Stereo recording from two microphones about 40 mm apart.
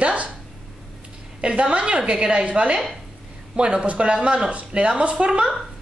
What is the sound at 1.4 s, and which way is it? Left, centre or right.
A woman's voice, right.